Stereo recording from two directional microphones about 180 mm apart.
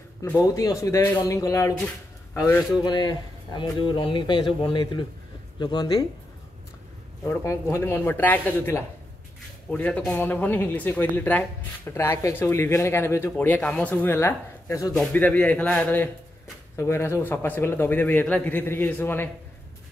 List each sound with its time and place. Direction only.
0.2 s a man's voice: 15° left (ahead or behind)
2.8 s speech: 25° left (ahead or behind)
7.2 s speech: 15° left (ahead or behind)